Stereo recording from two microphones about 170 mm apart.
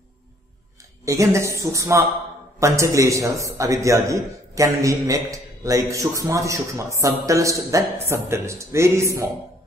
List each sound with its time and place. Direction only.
1.0 s a man's voice: 20° right (ahead or behind)